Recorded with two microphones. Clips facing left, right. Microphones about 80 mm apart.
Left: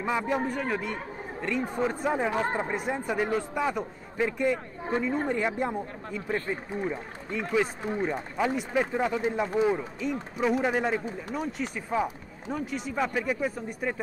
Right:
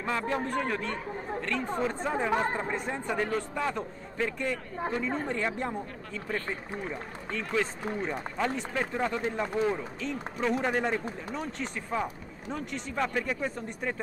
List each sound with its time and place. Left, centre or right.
0.0 s speech: centre